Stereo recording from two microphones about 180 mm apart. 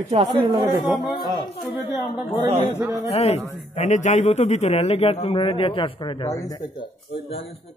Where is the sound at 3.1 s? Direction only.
35° left (ahead or behind).